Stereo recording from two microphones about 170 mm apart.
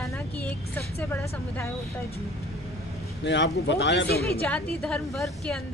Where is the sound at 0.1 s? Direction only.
10° left (ahead or behind).